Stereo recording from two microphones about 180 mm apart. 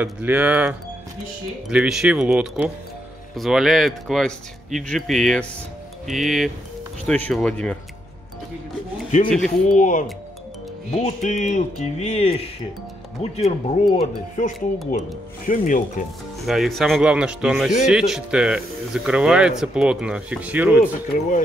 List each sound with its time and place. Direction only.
0.0 s speech: 10° right (ahead or behind)
9.3 s speech: 5° left (ahead or behind)
9.8 s speech: 45° left (ahead or behind)
16.4 s speech: centre (ahead or behind)
21.1 s speech: 50° left (ahead or behind)